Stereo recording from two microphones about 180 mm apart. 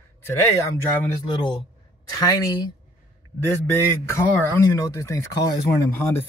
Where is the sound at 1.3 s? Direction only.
25° left (ahead or behind).